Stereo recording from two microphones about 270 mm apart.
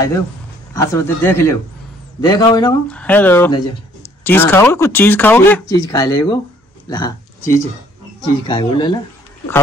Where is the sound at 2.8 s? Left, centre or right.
Centre.